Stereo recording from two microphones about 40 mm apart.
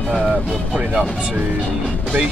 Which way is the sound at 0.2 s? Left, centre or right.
Right.